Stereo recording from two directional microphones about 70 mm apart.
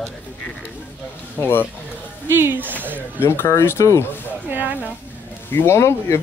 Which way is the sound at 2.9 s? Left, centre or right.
Left.